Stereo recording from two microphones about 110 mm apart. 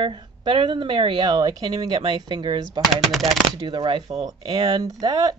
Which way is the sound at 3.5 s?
45° right (ahead or behind).